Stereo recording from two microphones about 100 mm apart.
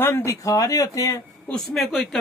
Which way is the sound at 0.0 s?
25° left (ahead or behind).